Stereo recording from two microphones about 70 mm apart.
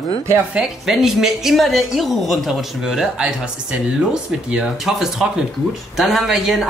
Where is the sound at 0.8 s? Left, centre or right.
Centre.